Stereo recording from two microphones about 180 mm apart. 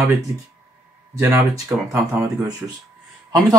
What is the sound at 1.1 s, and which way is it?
Speech, 15° right (ahead or behind).